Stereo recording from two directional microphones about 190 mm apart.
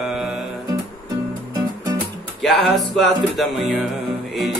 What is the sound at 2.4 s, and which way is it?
Music, centre (ahead or behind).